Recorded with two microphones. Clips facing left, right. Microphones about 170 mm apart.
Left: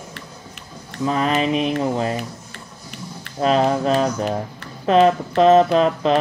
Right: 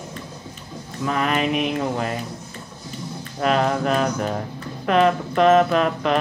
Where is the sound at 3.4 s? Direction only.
25° left (ahead or behind).